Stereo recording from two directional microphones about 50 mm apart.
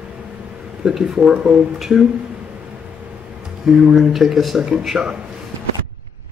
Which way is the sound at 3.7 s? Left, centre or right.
Centre.